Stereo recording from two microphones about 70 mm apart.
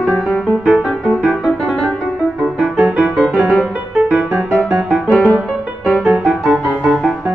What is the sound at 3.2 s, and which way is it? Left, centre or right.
Music, centre.